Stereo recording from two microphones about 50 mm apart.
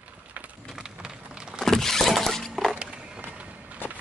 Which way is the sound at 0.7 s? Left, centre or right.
Centre.